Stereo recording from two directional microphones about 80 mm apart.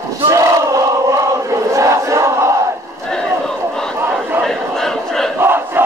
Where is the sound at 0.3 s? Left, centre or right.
Right.